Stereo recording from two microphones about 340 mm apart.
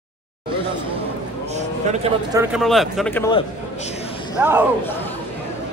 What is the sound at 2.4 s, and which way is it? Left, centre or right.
A man's voice, centre.